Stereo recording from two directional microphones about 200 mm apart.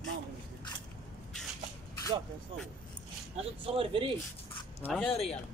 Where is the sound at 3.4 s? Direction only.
25° right (ahead or behind).